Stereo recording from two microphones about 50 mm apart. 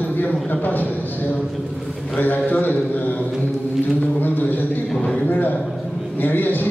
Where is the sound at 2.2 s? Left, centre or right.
Left.